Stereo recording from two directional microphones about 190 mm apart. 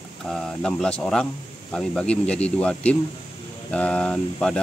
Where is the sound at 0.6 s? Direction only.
5° left (ahead or behind).